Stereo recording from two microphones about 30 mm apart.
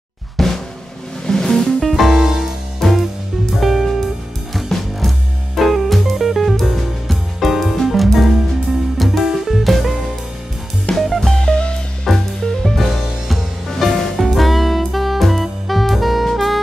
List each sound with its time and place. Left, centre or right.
0.4 s drum: centre
1.2 s music: left
1.8 s music: centre
2.1 s music: centre
2.8 s music: centre
3.5 s music: centre
4.7 s music: centre
5.6 s music: centre
10.9 s music: left
11.3 s music: left
12.7 s music: centre
13.7 s music: centre